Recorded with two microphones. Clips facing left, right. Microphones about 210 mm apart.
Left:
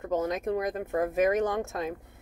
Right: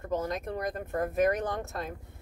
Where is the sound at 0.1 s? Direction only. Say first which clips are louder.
Left 4 dB; 20° left (ahead or behind).